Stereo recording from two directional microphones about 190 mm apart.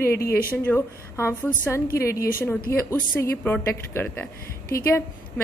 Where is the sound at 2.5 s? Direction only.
15° left (ahead or behind).